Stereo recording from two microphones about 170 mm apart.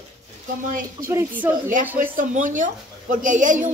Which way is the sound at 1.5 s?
50° right (ahead or behind).